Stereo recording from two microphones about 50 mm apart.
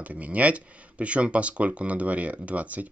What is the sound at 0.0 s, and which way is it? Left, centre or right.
Speech, right.